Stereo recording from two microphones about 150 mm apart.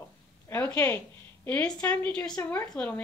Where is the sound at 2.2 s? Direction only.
25° left (ahead or behind).